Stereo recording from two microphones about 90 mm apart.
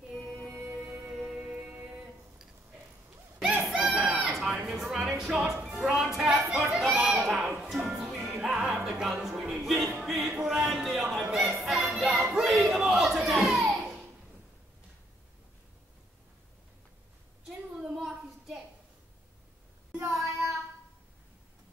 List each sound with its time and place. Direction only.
0.6 s music: 20° right (ahead or behind)
3.3 s bird: centre (ahead or behind)
3.8 s chicken: 10° right (ahead or behind)
4.6 s a sound: 5° right (ahead or behind)
7.8 s music: 5° right (ahead or behind)
17.5 s a sound: 5° right (ahead or behind)
20.1 s child singing: 5° right (ahead or behind)